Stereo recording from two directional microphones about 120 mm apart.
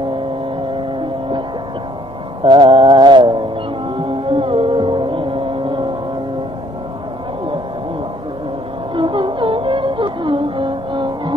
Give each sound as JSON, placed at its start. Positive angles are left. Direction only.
{"t": 2.4, "sound": "mantra", "side_deg": -40}
{"t": 3.9, "sound": "a sound", "side_deg": -45}
{"t": 8.9, "sound": "music", "side_deg": -45}